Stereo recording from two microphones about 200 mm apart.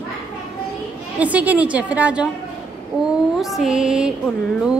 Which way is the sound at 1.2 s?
5° right (ahead or behind).